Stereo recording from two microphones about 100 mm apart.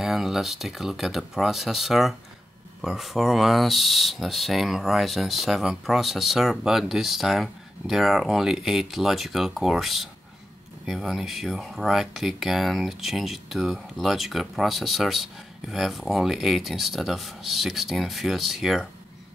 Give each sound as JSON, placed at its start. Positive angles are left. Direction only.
{"t": 0.0, "sound": "speech", "side_deg": -5}